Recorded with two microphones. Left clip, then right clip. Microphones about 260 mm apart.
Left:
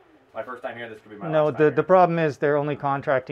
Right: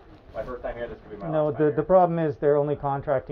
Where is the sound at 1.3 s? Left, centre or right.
Left.